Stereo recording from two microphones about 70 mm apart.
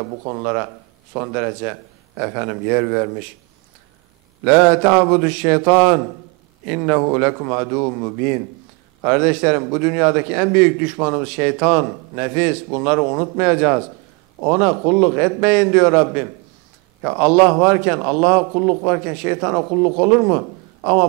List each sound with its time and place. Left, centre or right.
0.0 s a man's voice: centre
4.5 s a man's voice: centre